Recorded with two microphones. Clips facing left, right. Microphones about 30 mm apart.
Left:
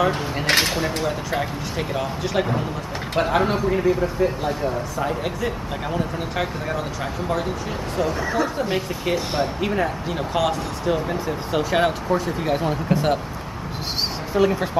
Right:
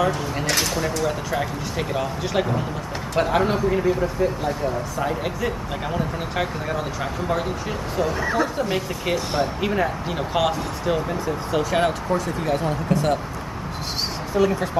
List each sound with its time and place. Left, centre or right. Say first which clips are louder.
0.5 s a sound: left 5 dB; left
1.4 s speech: even; centre
8.0 s speech: even; centre
8.5 s speech: even; centre
11.1 s speech: even; centre
14.3 s speech: left 1 dB; centre